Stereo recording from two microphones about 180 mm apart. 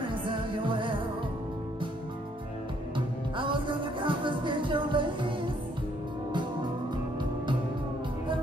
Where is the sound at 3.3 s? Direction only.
25° right (ahead or behind).